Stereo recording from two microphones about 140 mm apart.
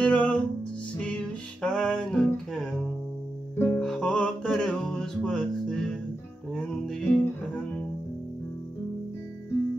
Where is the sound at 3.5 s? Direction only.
15° left (ahead or behind).